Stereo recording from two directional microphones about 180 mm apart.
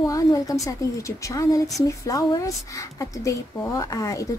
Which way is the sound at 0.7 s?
15° left (ahead or behind).